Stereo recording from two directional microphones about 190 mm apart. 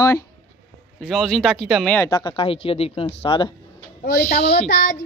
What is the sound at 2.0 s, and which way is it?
Speech, 20° left (ahead or behind).